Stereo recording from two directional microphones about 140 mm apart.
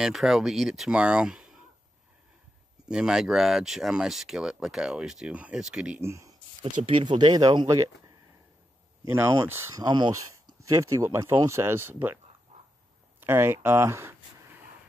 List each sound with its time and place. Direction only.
0.0 s speech: centre (ahead or behind)
2.9 s speech: 5° right (ahead or behind)
5.9 s speech: 20° right (ahead or behind)
6.9 s speech: 40° right (ahead or behind)
9.1 s speech: 20° right (ahead or behind)
13.2 s speech: 15° right (ahead or behind)